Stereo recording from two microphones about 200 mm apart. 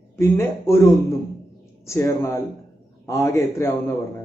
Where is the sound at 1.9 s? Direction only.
15° left (ahead or behind).